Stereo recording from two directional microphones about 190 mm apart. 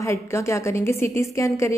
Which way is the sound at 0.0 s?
15° left (ahead or behind).